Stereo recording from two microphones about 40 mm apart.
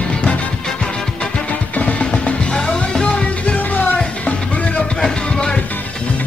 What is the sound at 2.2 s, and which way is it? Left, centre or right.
Music, left.